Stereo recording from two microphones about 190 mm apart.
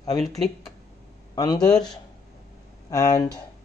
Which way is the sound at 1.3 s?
20° left (ahead or behind).